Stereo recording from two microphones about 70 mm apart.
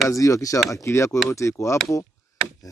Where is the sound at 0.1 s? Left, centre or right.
Left.